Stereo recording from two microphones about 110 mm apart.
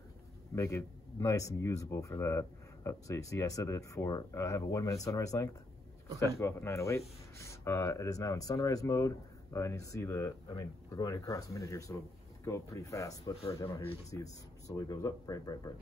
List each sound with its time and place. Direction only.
0.6 s speech: 30° left (ahead or behind)